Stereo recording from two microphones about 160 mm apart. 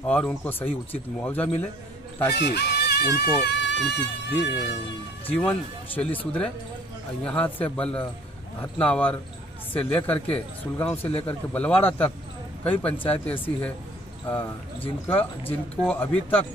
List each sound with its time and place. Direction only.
0.0 s speech: 10° left (ahead or behind)
2.3 s speech: 90° left
5.3 s speech: 10° left (ahead or behind)